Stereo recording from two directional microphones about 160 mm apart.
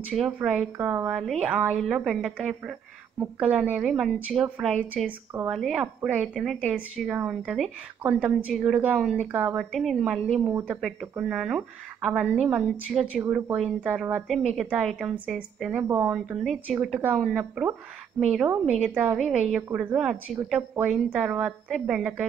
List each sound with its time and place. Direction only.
0.1 s a woman's voice: centre (ahead or behind)
5.0 s speech: 15° right (ahead or behind)
5.5 s a woman's voice: centre (ahead or behind)
10.4 s speech: 15° right (ahead or behind)
10.8 s a woman's voice: centre (ahead or behind)
18.7 s a woman's voice: 5° left (ahead or behind)